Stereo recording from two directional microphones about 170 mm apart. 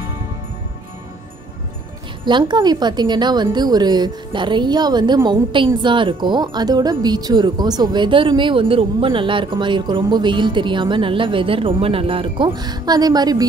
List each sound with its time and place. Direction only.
2.2 s speech: 25° right (ahead or behind)